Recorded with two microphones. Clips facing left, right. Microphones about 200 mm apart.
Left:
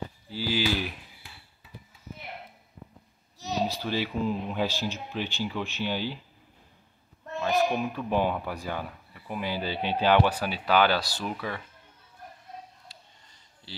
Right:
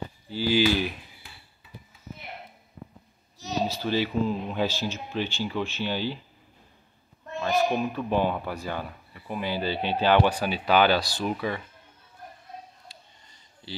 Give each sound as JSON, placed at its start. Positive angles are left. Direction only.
{"t": 0.3, "sound": "speech", "side_deg": 5}
{"t": 2.8, "sound": "a sound", "side_deg": -90}
{"t": 3.6, "sound": "speech", "side_deg": 10}
{"t": 7.3, "sound": "a sound", "side_deg": 5}
{"t": 8.1, "sound": "speech", "side_deg": 10}
{"t": 11.2, "sound": "speech", "side_deg": -5}